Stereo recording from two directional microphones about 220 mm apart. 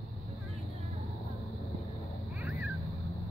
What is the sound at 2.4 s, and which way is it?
Cat, 5° right (ahead or behind).